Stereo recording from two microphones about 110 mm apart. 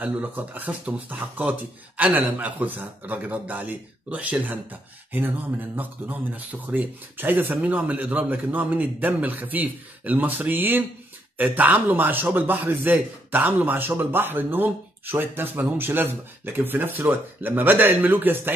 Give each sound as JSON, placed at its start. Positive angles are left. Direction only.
{"t": 0.0, "sound": "speech", "side_deg": -15}